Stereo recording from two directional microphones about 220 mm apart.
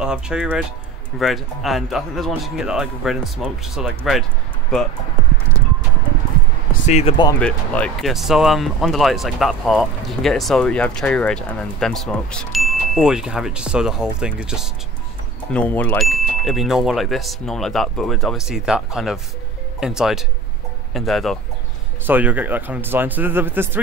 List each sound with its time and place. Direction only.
0.0 s speech: 5° right (ahead or behind)
6.9 s speech: 25° left (ahead or behind)
7.3 s a man's voice: 5° left (ahead or behind)